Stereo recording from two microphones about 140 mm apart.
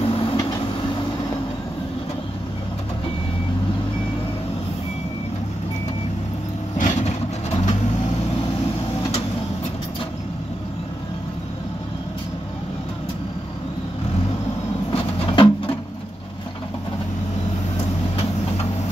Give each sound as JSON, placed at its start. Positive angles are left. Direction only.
{"t": 0.0, "sound": "train", "side_deg": 40}
{"t": 6.8, "sound": "vehicle", "side_deg": 55}
{"t": 14.9, "sound": "music", "side_deg": 40}